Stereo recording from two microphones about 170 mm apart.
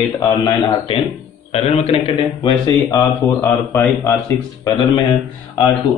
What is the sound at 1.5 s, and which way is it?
Speech, 35° left (ahead or behind).